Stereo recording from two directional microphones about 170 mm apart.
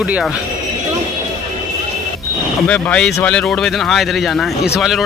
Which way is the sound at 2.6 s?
5° left (ahead or behind).